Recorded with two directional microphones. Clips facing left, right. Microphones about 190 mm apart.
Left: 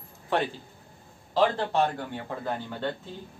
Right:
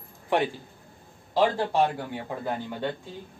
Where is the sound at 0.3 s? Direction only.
15° right (ahead or behind).